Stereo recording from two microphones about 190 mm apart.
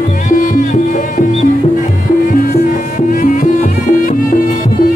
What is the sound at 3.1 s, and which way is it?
Music, 45° left (ahead or behind).